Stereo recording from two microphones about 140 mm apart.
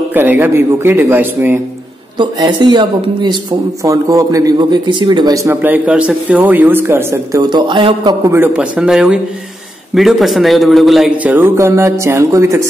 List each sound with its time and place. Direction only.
0.1 s speech: 15° right (ahead or behind)
2.1 s a man's voice: 30° right (ahead or behind)
7.4 s speech: 35° right (ahead or behind)
8.3 s a man's voice: 10° right (ahead or behind)
11.2 s a man's voice: 15° right (ahead or behind)